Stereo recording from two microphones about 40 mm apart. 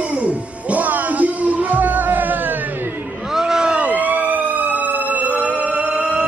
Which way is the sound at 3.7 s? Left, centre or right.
Right.